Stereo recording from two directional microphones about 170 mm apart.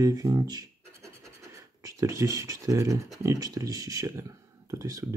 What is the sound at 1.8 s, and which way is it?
Speech, 20° right (ahead or behind).